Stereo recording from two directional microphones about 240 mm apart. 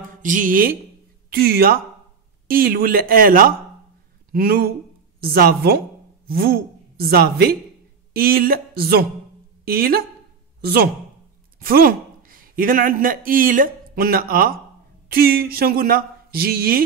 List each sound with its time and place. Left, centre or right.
0.2 s a woman's voice: right